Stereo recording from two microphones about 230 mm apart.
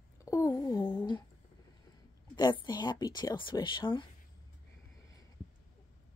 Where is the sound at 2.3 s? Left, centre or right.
Centre.